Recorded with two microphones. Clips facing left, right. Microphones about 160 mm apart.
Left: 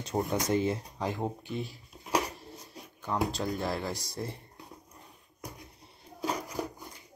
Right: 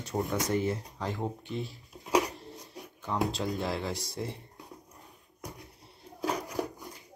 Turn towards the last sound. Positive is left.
turn(degrees=0)  # may be behind; listen again after turning